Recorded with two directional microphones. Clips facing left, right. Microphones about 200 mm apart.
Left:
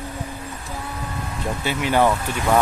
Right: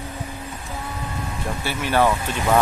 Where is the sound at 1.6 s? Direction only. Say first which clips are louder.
Left 1 dB; 15° left (ahead or behind).